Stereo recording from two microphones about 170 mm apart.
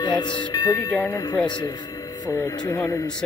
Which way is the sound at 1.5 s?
25° left (ahead or behind).